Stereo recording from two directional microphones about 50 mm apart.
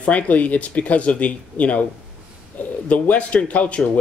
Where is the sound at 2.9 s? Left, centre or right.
Left.